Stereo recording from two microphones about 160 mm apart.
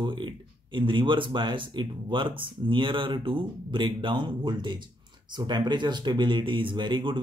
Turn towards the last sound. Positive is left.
turn(degrees=-30)  # may be behind; listen again after turning